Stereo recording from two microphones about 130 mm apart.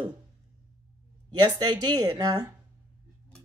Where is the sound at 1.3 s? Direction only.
35° right (ahead or behind).